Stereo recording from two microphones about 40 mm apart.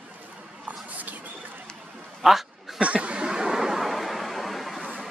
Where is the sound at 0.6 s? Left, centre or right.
Right.